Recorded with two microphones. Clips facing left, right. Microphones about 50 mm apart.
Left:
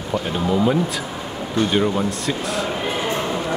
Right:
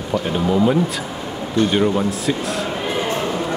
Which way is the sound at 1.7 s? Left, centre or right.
Centre.